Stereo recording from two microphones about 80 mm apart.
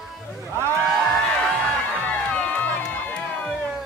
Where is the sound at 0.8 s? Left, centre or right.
Centre.